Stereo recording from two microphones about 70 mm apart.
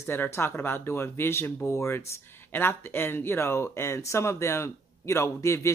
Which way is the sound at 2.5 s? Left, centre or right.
Left.